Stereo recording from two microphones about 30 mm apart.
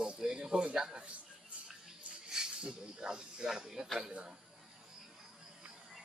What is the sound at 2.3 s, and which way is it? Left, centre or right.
Speech, right.